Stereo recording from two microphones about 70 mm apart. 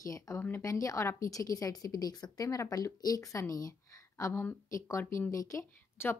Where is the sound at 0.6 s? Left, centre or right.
Left.